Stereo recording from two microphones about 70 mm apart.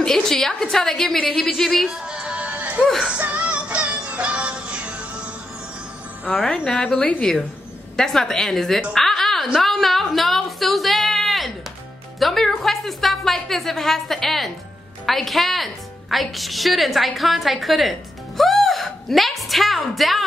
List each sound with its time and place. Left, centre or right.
0.0 s a woman's voice: centre
2.0 s music: centre
2.8 s a woman's voice: centre
3.1 s music: centre
6.4 s a woman's voice: centre
8.9 s a sound: centre
12.2 s a woman's voice: centre